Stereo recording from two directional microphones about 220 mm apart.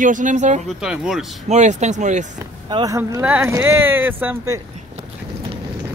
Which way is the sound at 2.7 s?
15° right (ahead or behind).